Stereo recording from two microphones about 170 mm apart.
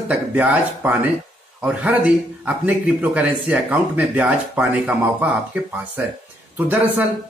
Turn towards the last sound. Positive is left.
turn(degrees=-10)  # may be behind; listen again after turning